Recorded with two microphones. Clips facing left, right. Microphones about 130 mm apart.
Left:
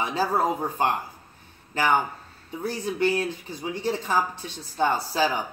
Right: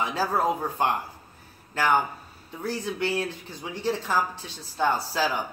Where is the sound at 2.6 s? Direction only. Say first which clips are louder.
Left 3 dB; 15° left (ahead or behind).